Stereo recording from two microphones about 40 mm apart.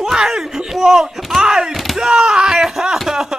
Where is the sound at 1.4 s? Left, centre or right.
Centre.